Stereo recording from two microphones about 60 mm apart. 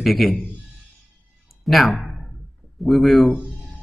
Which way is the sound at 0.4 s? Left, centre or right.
Right.